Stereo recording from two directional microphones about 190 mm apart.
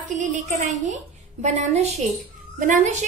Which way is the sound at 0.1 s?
40° right (ahead or behind).